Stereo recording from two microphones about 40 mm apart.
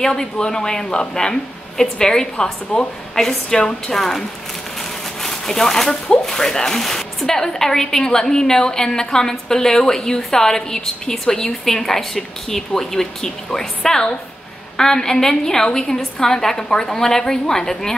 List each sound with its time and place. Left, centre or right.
0.0 s speech: centre
5.2 s speech: centre